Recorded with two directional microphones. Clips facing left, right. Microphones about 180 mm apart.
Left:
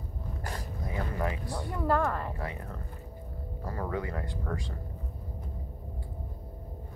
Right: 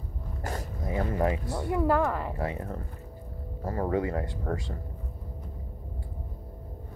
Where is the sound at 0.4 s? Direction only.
25° right (ahead or behind).